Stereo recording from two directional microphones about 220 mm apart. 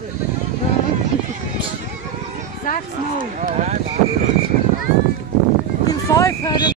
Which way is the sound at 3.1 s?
35° right (ahead or behind).